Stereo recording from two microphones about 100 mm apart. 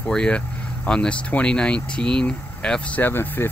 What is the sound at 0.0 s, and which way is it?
Speech, 10° left (ahead or behind).